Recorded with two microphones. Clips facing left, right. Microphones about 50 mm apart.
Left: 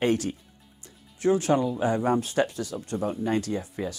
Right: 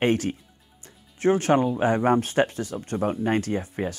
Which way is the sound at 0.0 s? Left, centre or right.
Right.